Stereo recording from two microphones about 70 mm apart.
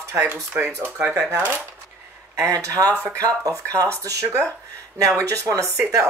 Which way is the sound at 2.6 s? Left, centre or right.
Right.